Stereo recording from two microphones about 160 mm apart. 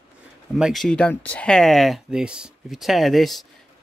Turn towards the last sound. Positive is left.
turn(degrees=0)  # may be behind; listen again after turning